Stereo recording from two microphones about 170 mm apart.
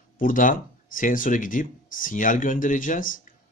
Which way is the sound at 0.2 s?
50° left (ahead or behind).